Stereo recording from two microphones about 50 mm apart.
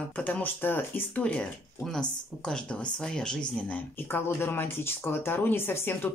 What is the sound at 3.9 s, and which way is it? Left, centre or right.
Speech, left.